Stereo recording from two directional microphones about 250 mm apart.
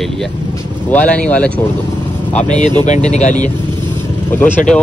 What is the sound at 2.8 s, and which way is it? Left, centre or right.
Speech, left.